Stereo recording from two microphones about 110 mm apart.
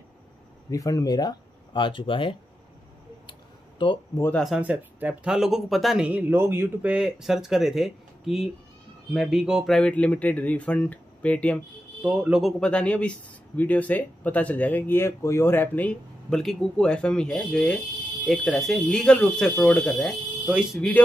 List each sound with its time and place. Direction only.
0.7 s speech: 30° left (ahead or behind); by 2.3 s 50° left (ahead or behind)
3.3 s a sound: 50° left (ahead or behind)
4.6 s speech: 15° right (ahead or behind)
6.0 s speech: 15° right (ahead or behind)
9.8 s speech: 10° left (ahead or behind)
12.0 s speech: 5° right (ahead or behind); by 20.2 s 10° left (ahead or behind)
20.4 s speech: centre (ahead or behind)